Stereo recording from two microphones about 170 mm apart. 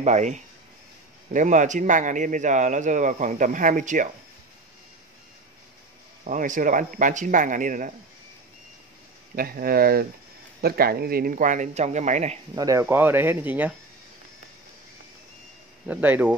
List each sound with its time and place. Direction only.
0.0 s speech: 45° right (ahead or behind)
6.2 s speech: 50° right (ahead or behind)
9.3 s speech: 60° right (ahead or behind); by 12.4 s 45° right (ahead or behind)
12.5 s speech: 20° right (ahead or behind)
15.9 s speech: 10° right (ahead or behind)